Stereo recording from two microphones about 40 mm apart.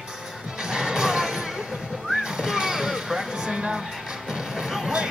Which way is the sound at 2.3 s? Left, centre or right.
Centre.